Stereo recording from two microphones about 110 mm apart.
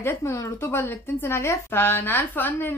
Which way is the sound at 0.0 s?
25° left (ahead or behind).